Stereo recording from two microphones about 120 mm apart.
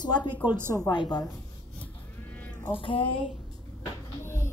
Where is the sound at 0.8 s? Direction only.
35° left (ahead or behind).